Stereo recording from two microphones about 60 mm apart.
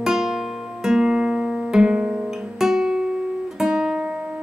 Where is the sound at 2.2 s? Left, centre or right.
Centre.